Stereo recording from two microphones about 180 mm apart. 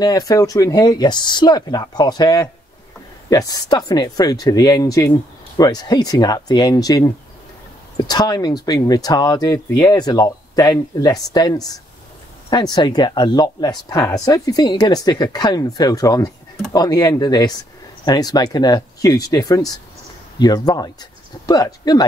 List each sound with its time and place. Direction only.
0.0 s speech: 20° left (ahead or behind)